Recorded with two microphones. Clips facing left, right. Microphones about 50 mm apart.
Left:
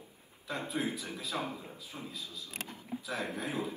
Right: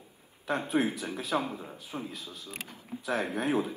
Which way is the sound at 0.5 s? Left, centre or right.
Right.